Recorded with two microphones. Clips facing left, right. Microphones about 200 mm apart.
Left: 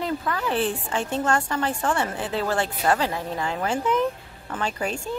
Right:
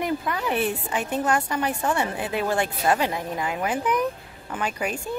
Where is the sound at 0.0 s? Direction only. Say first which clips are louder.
Even; 15° right (ahead or behind).